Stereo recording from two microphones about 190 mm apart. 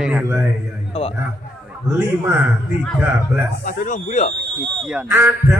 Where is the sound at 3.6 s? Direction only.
45° left (ahead or behind).